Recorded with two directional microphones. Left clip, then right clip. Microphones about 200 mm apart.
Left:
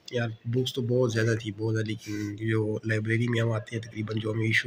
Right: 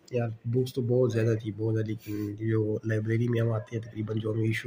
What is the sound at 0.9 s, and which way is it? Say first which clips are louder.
Speech: even; 20° right (ahead or behind).